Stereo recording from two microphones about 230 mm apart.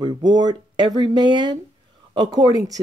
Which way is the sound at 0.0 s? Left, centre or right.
Centre.